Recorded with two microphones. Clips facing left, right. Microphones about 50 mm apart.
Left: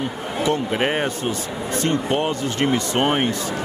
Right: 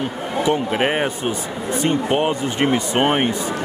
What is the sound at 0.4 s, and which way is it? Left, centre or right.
Speech, centre.